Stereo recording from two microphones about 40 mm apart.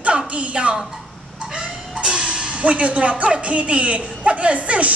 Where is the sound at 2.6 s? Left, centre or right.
Right.